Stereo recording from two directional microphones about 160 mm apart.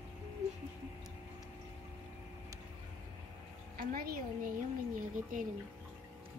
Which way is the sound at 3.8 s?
70° right (ahead or behind).